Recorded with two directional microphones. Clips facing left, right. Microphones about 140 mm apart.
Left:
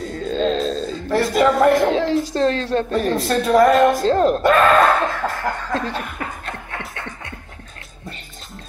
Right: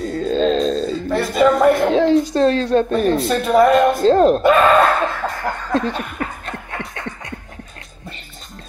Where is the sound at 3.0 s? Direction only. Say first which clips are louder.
Right 2 dB; 5° right (ahead or behind).